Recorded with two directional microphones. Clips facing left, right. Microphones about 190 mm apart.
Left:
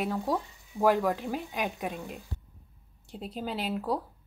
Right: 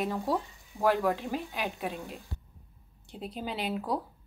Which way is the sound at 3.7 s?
5° left (ahead or behind).